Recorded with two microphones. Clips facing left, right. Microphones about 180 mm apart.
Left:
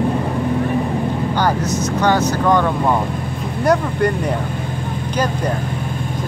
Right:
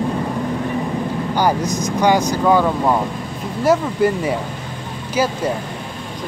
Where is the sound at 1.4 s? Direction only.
10° right (ahead or behind).